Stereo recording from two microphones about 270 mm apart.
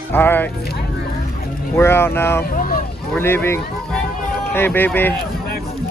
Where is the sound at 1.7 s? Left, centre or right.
Centre.